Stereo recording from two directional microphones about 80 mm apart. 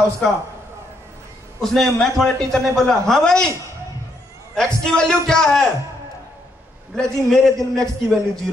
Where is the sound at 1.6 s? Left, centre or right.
Centre.